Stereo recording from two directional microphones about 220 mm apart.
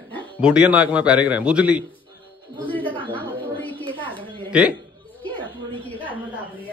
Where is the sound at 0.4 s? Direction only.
5° right (ahead or behind).